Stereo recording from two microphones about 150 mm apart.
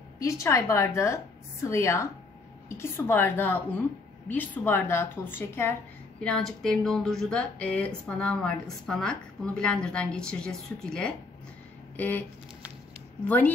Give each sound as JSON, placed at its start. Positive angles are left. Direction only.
{"t": 0.2, "sound": "a woman's voice", "side_deg": 20}